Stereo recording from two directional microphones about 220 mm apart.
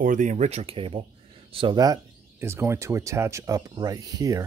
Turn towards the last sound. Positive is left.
turn(degrees=-15)  # may be behind; listen again after turning